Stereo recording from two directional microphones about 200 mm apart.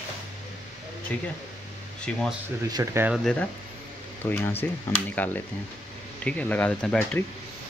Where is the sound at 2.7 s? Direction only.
15° right (ahead or behind).